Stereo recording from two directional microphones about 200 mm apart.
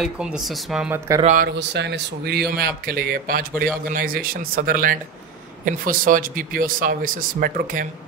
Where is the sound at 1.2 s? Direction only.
45° right (ahead or behind).